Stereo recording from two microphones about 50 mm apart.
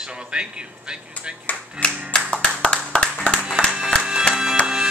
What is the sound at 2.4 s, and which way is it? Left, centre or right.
Clapping, centre.